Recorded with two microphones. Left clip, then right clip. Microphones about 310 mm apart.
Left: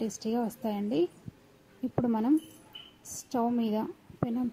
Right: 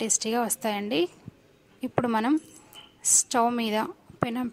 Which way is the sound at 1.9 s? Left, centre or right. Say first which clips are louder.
Right 4 dB; right.